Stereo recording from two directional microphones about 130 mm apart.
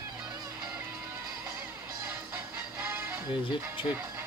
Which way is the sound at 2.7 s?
15° right (ahead or behind).